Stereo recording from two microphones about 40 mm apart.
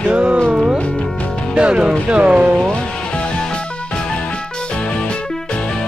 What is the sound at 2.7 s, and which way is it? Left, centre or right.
Music, left.